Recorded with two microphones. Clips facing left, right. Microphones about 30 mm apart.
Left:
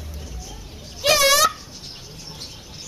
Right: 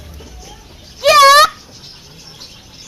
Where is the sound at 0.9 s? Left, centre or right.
Right.